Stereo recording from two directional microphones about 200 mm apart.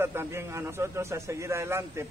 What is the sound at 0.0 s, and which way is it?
A man's voice, 10° right (ahead or behind).